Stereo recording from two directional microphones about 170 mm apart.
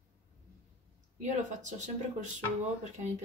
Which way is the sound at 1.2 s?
45° right (ahead or behind).